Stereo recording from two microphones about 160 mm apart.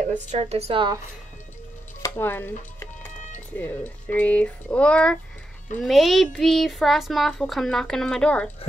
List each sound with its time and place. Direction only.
0.1 s speech: 45° right (ahead or behind)
2.0 s stir: 15° left (ahead or behind)
3.5 s a child's voice: 10° left (ahead or behind)